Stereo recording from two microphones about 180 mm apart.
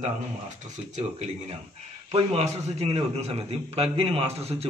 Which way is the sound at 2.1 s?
35° right (ahead or behind).